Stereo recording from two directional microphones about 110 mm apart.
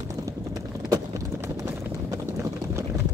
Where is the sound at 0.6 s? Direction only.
35° right (ahead or behind).